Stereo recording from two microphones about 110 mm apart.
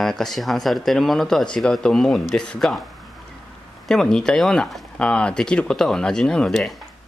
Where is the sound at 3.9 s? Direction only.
5° left (ahead or behind).